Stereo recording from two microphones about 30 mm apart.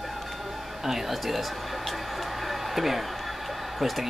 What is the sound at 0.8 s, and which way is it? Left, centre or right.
Speech, centre.